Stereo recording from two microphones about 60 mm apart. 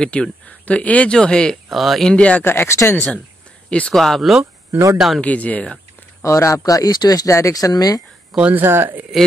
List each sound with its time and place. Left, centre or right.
0.0 s speech: centre
1.7 s speech: centre
2.0 s speech: centre
2.4 s speech: left
3.9 s speech: centre
5.2 s speech: left
6.2 s speech: left
7.3 s speech: left
8.4 s speech: right
8.6 s speech: right